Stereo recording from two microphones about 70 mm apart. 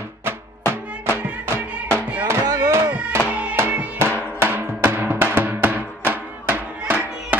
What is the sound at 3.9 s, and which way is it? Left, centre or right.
Music, right.